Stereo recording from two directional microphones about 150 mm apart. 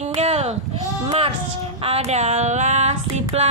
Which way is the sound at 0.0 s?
45° right (ahead or behind).